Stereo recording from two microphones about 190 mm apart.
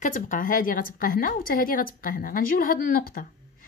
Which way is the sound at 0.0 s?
45° left (ahead or behind).